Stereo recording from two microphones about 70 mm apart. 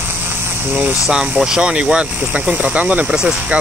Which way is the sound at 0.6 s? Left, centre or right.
Right.